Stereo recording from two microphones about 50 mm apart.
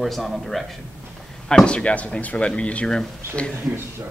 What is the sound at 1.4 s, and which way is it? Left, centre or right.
Speech, centre.